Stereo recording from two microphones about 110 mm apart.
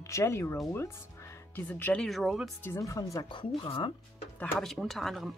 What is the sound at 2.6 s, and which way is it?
Speech, 30° left (ahead or behind).